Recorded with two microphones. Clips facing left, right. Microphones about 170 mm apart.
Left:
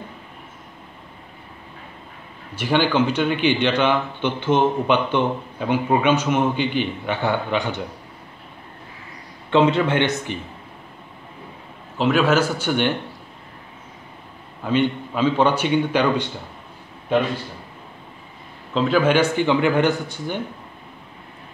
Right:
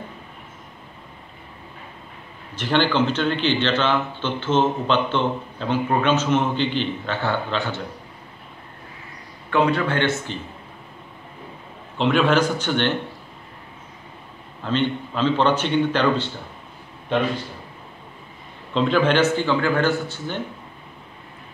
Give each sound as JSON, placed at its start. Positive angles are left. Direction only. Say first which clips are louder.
{"t": 2.5, "sound": "a man's voice", "louder": "left 1 dB", "side_deg": 10}
{"t": 9.5, "sound": "a man's voice", "louder": "left 3 dB", "side_deg": 25}
{"t": 12.0, "sound": "a man's voice", "louder": "left 1 dB", "side_deg": 5}
{"t": 14.6, "sound": "a man's voice", "louder": "left 2 dB", "side_deg": 10}
{"t": 18.7, "sound": "a man's voice", "louder": "left 1 dB", "side_deg": 5}